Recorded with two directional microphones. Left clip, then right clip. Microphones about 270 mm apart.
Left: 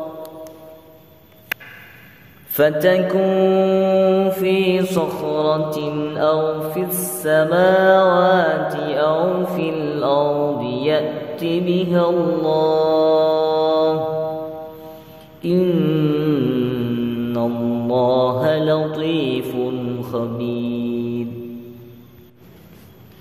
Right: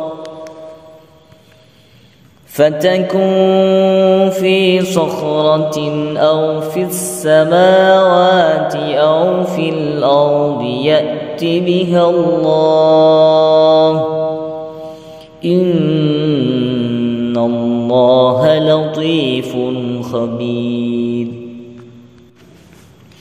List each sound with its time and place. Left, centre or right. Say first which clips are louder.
2.5 s mantra: right 4 dB; centre
15.4 s mantra: right 5 dB; centre